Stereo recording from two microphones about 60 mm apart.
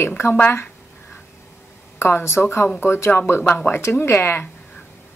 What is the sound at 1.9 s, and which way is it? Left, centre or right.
A woman's voice, left.